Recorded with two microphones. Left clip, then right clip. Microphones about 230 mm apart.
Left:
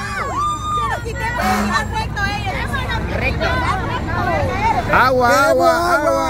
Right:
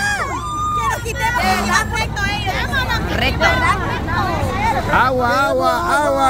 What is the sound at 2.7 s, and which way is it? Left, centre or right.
Vehicle, right.